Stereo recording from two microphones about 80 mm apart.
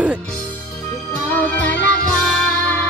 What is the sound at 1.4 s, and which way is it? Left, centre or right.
Music, left.